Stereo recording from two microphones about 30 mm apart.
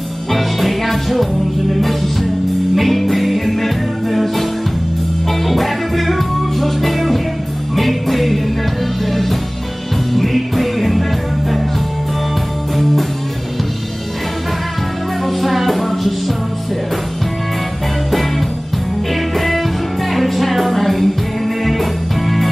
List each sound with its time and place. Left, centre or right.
0.3 s music: centre
12.7 s music: centre
15.2 s music: centre
19.3 s music: centre